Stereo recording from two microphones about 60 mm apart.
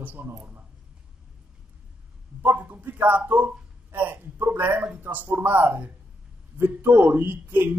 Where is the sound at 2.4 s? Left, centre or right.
Right.